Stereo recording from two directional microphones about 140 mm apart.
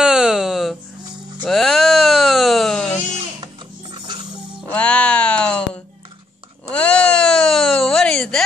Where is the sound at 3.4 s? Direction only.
35° right (ahead or behind).